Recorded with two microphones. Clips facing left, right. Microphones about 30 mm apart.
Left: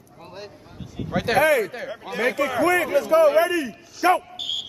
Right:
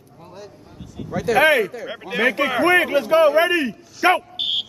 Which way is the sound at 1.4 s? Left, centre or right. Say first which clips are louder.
Right 4 dB; right.